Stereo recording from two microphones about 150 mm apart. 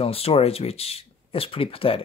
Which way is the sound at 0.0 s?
40° left (ahead or behind).